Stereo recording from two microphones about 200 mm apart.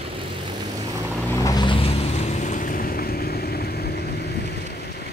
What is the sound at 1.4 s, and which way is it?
Boat, 20° left (ahead or behind).